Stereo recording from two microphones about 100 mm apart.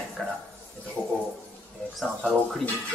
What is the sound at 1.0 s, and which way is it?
Speech, 30° left (ahead or behind).